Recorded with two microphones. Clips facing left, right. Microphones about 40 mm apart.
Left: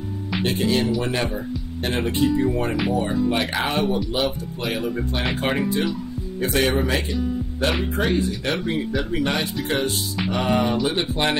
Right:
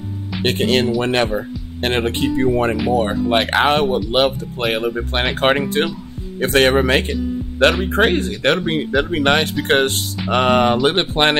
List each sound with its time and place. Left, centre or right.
0.4 s speech: right